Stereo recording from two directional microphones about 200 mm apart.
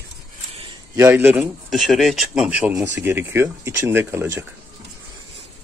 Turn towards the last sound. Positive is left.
turn(degrees=-15)  # may be behind; listen again after turning